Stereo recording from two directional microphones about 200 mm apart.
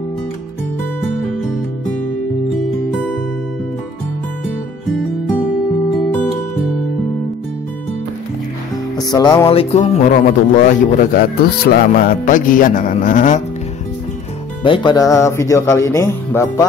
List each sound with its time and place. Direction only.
8.9 s speech: 20° left (ahead or behind); by 13.4 s 40° left (ahead or behind)
14.6 s speech: 25° left (ahead or behind)